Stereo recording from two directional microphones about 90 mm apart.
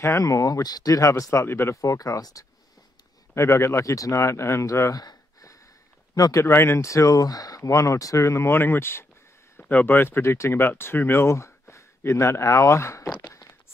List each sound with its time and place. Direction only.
0.0 s speech: 35° left (ahead or behind)
5.0 s a sound: 40° left (ahead or behind)
6.1 s speech: 40° left (ahead or behind)
6.4 s speech: 30° left (ahead or behind)
9.6 s speech: 15° left (ahead or behind); by 13.1 s 30° left (ahead or behind)